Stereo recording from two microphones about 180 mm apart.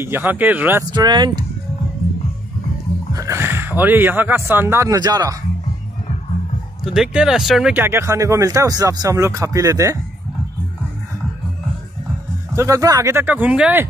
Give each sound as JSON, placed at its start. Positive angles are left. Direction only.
{"t": 0.0, "sound": "speech", "side_deg": -10}
{"t": 0.9, "sound": "speech", "side_deg": -25}
{"t": 3.1, "sound": "speech", "side_deg": -15}
{"t": 6.8, "sound": "speech", "side_deg": -5}
{"t": 12.5, "sound": "speech", "side_deg": -15}